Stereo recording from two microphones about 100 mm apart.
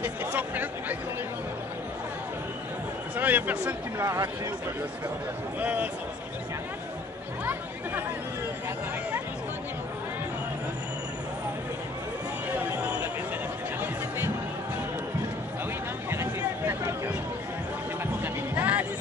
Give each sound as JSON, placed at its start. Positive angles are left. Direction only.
{"t": 0.0, "sound": "a sound", "side_deg": -20}
{"t": 3.2, "sound": "speech", "side_deg": -15}
{"t": 4.0, "sound": "speech", "side_deg": -30}
{"t": 5.6, "sound": "a man's voice", "side_deg": -15}
{"t": 16.1, "sound": "a sound", "side_deg": -25}
{"t": 18.2, "sound": "music", "side_deg": -20}